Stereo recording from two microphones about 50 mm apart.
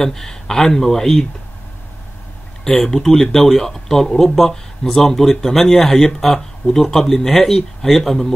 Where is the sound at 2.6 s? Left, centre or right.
Centre.